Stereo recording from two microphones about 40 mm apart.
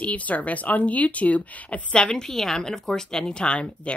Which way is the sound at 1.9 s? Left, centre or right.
Left.